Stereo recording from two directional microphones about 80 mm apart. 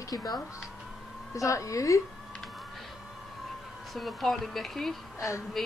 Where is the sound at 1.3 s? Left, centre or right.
Left.